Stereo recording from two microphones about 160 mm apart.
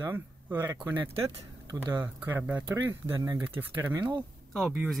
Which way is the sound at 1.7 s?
10° right (ahead or behind).